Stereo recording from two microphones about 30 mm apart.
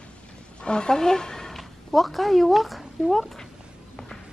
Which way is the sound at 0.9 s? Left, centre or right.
Centre.